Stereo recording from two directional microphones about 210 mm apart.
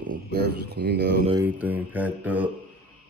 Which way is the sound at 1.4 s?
10° right (ahead or behind).